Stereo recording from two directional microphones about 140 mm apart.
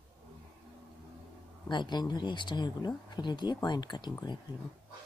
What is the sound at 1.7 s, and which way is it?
Speech, 30° left (ahead or behind).